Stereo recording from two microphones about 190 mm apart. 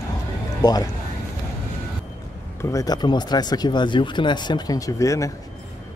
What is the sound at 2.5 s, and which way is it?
Speech, 15° left (ahead or behind).